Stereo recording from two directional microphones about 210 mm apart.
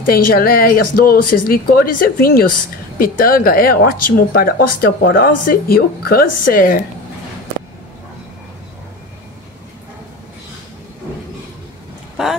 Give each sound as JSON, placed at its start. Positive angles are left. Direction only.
{"t": 0.0, "sound": "speech", "side_deg": 45}
{"t": 12.2, "sound": "speech", "side_deg": 0}